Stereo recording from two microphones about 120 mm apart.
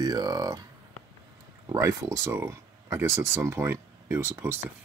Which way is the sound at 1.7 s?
25° right (ahead or behind).